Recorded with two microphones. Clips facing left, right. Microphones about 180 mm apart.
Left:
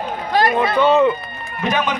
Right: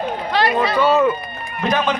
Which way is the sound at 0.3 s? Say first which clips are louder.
Left 2 dB; 45° left (ahead or behind).